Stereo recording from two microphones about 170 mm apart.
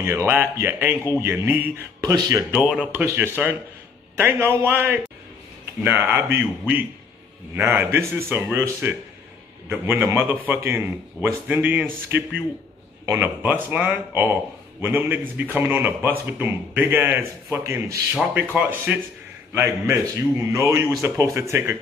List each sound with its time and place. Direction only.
0.0 s speech: 15° right (ahead or behind)
7.5 s speech: 10° right (ahead or behind)